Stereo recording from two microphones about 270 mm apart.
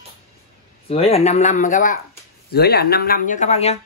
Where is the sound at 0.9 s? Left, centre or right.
Left.